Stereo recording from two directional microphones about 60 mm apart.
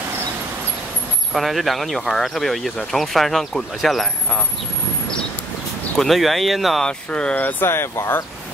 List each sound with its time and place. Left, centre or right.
1.3 s speech: centre
5.9 s speech: centre
6.9 s speech: centre
7.6 s speech: left